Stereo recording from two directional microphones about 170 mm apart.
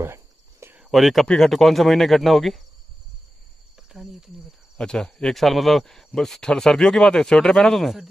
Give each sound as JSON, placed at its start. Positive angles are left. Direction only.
{"t": 0.0, "sound": "cricket", "side_deg": -15}
{"t": 0.8, "sound": "speech", "side_deg": 0}
{"t": 3.9, "sound": "cricket", "side_deg": -5}
{"t": 4.7, "sound": "speech", "side_deg": 5}